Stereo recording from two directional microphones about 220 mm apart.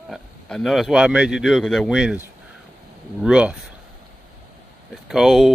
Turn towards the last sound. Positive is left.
turn(degrees=0)  # may be behind; listen again after turning